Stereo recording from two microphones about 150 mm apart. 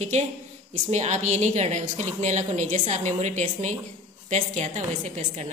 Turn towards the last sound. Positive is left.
turn(degrees=-55)  # may be behind; listen again after turning